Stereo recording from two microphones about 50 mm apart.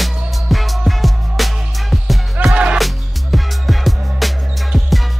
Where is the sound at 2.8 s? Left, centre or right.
Centre.